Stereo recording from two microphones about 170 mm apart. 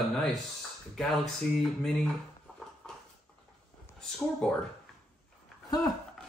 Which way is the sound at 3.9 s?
5° left (ahead or behind).